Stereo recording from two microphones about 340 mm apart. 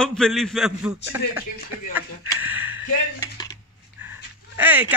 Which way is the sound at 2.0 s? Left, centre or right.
Centre.